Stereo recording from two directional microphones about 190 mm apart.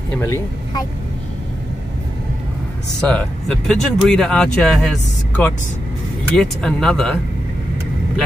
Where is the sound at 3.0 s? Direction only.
5° left (ahead or behind).